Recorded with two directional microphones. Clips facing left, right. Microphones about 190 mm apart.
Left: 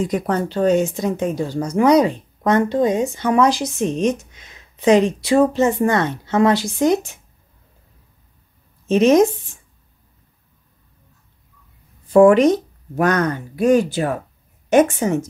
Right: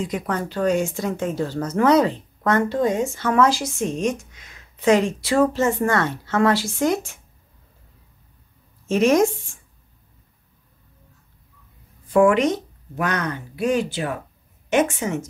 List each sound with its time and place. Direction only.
0.0 s speech: 40° left (ahead or behind)
0.5 s speech: 25° left (ahead or behind)
8.8 s speech: 20° left (ahead or behind)
12.1 s speech: 35° left (ahead or behind)